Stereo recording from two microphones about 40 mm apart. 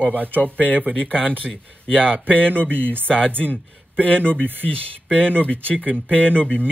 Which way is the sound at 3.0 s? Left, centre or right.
Left.